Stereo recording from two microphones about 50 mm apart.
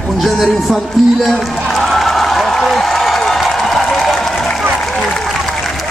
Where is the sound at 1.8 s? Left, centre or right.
Centre.